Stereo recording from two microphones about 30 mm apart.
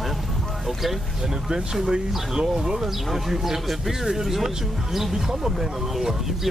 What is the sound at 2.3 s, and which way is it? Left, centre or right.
Speech, centre.